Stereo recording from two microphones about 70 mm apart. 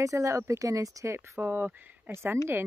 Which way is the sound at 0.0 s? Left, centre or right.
Right.